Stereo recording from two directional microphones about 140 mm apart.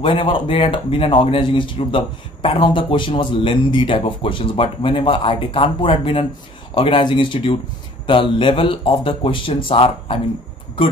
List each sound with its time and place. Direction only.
0.0 s speech: 40° left (ahead or behind)